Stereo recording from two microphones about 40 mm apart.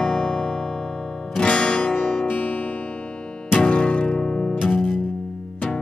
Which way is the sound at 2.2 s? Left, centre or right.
Left.